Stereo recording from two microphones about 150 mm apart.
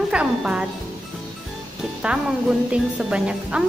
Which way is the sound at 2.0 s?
5° right (ahead or behind).